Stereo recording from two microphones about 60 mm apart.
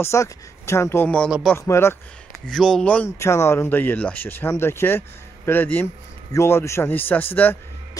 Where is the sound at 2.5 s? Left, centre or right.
Centre.